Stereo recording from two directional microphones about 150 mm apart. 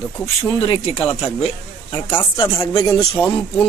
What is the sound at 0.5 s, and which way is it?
Speech, 40° left (ahead or behind).